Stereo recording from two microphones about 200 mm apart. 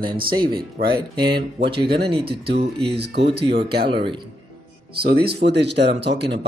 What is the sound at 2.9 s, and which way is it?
Speech, 55° right (ahead or behind).